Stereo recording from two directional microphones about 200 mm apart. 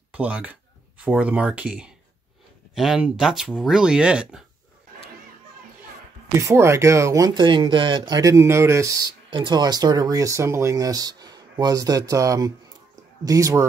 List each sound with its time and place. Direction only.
0.1 s speech: 5° right (ahead or behind)
6.3 s speech: 15° right (ahead or behind)